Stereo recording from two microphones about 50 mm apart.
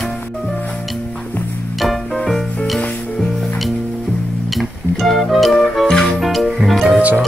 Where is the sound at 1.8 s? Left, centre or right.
Centre.